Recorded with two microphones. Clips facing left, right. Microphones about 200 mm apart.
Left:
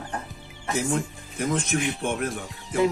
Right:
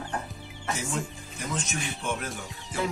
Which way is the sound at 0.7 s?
60° left (ahead or behind).